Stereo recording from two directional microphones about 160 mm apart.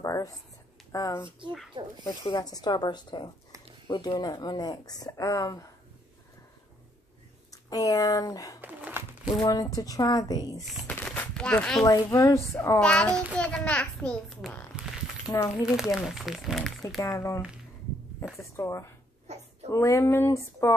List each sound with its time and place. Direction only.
0.0 s speech: 20° left (ahead or behind)
7.5 s speech: 20° left (ahead or behind)
8.5 s a sound: 10° right (ahead or behind)
9.4 s speech: 20° left (ahead or behind)
10.7 s a sound: centre (ahead or behind)
11.8 s a child's voice: 20° left (ahead or behind)
15.2 s speech: 20° left (ahead or behind)
15.6 s speech: 5° right (ahead or behind)
17.0 s speech: 15° left (ahead or behind)
18.6 s speech: 15° left (ahead or behind)
19.3 s speech: 45° right (ahead or behind)
19.7 s speech: 20° left (ahead or behind)